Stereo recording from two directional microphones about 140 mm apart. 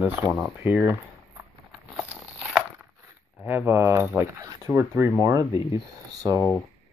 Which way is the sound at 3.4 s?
15° right (ahead or behind).